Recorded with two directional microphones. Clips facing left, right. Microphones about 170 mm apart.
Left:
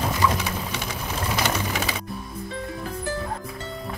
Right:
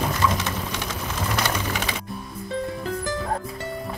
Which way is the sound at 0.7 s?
10° left (ahead or behind).